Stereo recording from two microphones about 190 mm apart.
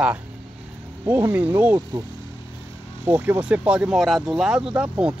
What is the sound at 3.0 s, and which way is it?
Speech, 10° right (ahead or behind).